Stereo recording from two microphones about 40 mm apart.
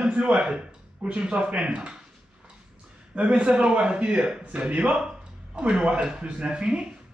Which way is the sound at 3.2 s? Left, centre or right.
Right.